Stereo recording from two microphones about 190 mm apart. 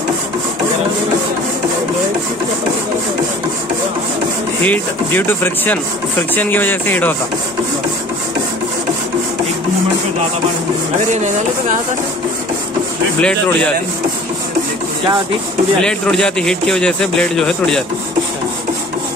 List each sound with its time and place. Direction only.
4.6 s speech: 10° left (ahead or behind)
11.0 s speech: 40° right (ahead or behind)
13.2 s speech: 5° left (ahead or behind)
15.8 s speech: 5° left (ahead or behind)